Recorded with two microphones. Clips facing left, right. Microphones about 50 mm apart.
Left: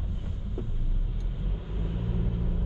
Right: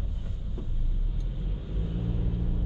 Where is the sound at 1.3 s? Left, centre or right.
Centre.